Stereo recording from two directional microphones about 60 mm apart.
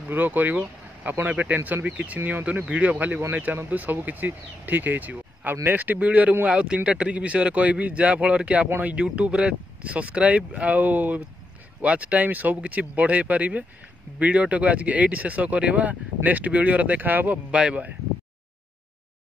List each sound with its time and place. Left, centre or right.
0.1 s speech: right
2.7 s speech: right
8.6 s speech: right
8.9 s speech: centre
17.5 s speech: centre